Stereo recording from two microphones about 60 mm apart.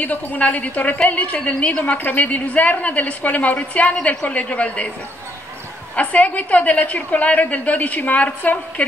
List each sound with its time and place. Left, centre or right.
0.0 s a woman's voice: left
5.9 s a woman's voice: left